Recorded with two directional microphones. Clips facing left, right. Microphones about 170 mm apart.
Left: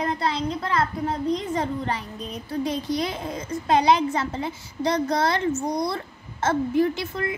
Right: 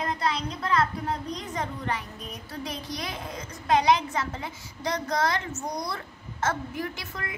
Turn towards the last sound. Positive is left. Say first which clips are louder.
# left 10 dB
turn(degrees=30)  # may be behind; listen again after turning